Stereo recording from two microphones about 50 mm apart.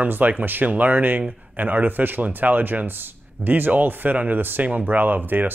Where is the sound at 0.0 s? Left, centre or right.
Right.